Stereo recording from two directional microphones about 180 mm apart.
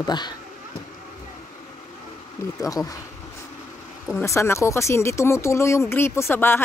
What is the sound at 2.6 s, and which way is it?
Speech, 20° left (ahead or behind).